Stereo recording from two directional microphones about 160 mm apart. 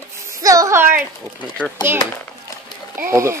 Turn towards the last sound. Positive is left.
turn(degrees=-15)  # may be behind; listen again after turning